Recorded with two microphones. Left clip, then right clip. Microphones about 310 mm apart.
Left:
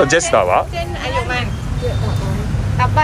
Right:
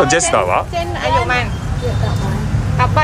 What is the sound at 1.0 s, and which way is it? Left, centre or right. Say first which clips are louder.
Vehicle: right 5 dB; right.